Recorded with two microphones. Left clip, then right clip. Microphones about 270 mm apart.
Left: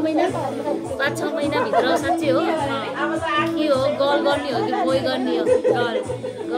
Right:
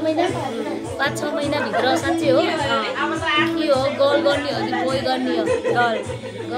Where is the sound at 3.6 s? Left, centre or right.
Centre.